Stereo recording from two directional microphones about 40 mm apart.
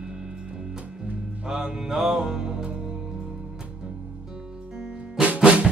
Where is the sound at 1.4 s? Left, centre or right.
Right.